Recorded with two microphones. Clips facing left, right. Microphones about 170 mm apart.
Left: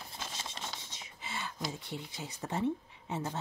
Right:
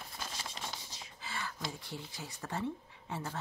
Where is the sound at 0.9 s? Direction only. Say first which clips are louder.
Left 1 dB; 20° left (ahead or behind).